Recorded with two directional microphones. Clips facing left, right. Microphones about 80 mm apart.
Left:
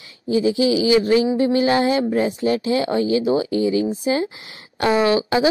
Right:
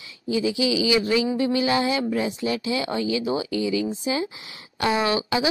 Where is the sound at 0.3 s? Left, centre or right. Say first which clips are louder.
Left 5 dB; left.